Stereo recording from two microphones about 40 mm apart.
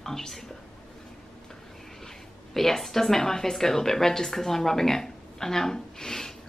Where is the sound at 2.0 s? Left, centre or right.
Centre.